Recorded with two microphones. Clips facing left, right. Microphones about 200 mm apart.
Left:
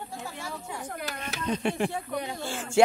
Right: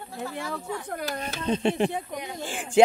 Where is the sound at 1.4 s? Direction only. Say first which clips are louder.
Right 4 dB; 25° right (ahead or behind).